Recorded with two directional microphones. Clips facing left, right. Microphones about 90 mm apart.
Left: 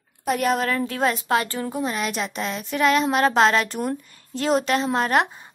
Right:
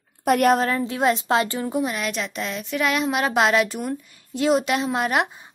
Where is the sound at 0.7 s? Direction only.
20° right (ahead or behind).